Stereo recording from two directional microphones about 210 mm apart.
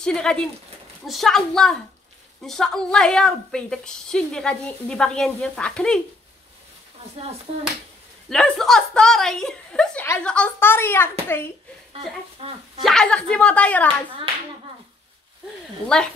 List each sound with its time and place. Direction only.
0.0 s a woman's voice: 5° left (ahead or behind)
8.3 s a woman's voice: centre (ahead or behind)
12.8 s a woman's voice: 5° left (ahead or behind)